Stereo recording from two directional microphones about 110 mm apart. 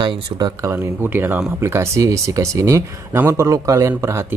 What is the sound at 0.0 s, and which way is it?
Speech, 40° right (ahead or behind).